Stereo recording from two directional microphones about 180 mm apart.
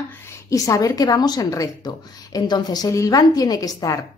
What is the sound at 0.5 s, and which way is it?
A woman's voice, 20° left (ahead or behind).